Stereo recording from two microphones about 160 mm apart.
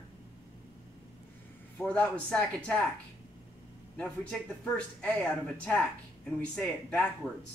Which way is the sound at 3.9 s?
5° left (ahead or behind).